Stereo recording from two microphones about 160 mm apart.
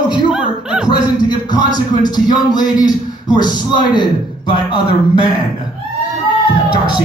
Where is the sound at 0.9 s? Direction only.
25° left (ahead or behind).